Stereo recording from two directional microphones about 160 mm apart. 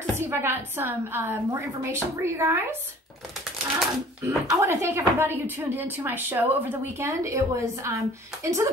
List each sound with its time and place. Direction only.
0.2 s speech: 15° right (ahead or behind)
3.8 s speech: centre (ahead or behind)
4.6 s speech: 15° right (ahead or behind)